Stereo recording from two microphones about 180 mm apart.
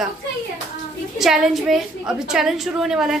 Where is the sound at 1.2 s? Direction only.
Centre (ahead or behind).